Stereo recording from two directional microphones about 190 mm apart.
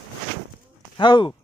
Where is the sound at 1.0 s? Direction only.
25° left (ahead or behind).